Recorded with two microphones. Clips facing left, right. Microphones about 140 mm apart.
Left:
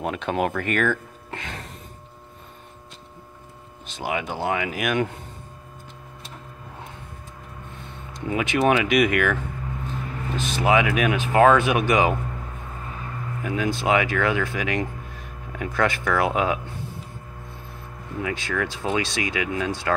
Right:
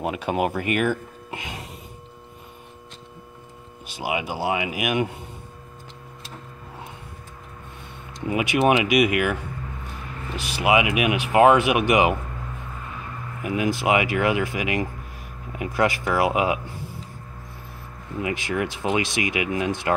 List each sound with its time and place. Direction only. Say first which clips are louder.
0.0 s speech: right 1 dB; 5° right (ahead or behind)
3.8 s speech: right 1 dB; 10° right (ahead or behind)
8.3 s speech: right 1 dB; 10° right (ahead or behind)
10.4 s speech: even; 10° right (ahead or behind)
13.4 s speech: right 2 dB; 15° right (ahead or behind)
18.2 s speech: right 1 dB; 15° right (ahead or behind)